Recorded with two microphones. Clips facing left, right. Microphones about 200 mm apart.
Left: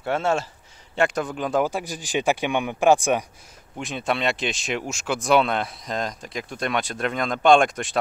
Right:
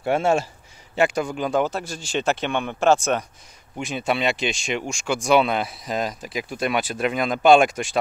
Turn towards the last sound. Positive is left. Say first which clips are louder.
# right 2 dB
turn(degrees=0)  # may be behind; listen again after turning